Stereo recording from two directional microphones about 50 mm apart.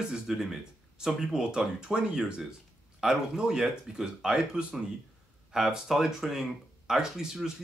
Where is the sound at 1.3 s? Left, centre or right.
Centre.